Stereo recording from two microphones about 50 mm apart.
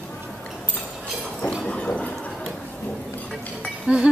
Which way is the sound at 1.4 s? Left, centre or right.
Left.